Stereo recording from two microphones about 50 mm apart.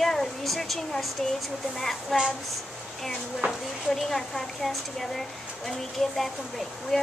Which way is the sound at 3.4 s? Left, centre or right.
Right.